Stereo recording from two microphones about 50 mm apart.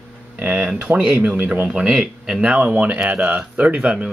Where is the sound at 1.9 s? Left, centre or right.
Centre.